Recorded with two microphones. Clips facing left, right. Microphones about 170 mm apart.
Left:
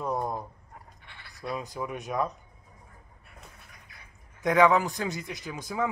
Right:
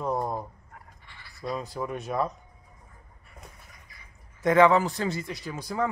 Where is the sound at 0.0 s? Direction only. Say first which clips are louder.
Right 2 dB; 5° right (ahead or behind).